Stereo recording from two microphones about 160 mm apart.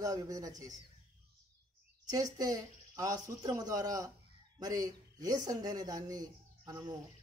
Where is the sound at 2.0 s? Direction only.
25° right (ahead or behind).